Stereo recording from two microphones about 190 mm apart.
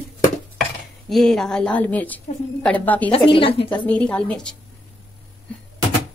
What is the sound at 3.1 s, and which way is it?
Speech, 25° left (ahead or behind).